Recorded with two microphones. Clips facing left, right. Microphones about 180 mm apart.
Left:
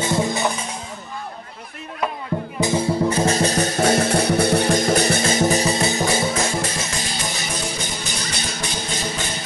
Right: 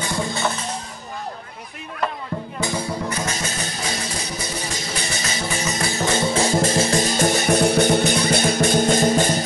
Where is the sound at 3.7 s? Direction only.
55° left (ahead or behind); by 6.1 s 20° left (ahead or behind).